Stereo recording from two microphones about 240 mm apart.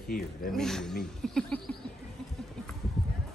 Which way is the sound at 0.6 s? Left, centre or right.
Centre.